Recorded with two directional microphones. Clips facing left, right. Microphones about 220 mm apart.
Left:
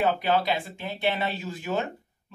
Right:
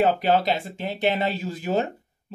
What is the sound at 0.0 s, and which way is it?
Speech, 45° right (ahead or behind).